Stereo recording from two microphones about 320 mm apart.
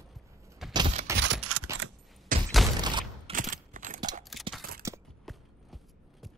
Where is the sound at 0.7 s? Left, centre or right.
Centre.